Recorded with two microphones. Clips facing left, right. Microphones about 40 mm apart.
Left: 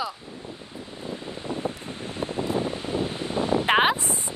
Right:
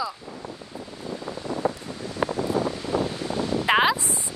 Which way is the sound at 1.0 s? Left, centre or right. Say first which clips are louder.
Right 1 dB; left.